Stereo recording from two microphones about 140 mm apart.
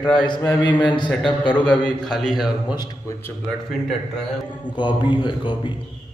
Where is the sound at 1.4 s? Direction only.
10° left (ahead or behind).